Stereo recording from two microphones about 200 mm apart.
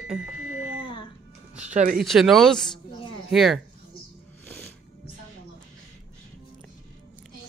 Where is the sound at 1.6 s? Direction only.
40° right (ahead or behind).